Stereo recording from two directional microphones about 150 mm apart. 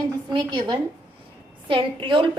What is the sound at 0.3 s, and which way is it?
A woman's voice, 30° right (ahead or behind).